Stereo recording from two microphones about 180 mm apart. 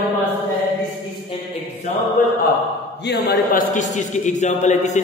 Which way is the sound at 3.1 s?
60° left (ahead or behind).